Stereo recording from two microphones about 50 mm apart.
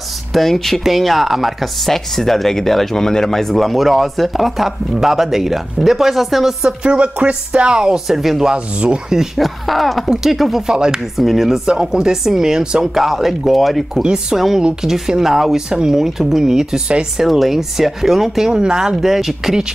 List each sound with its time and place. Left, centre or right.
0.3 s speech: centre
6.6 s speech: right
8.5 s speech: centre
14.0 s speech: centre
18.5 s speech: centre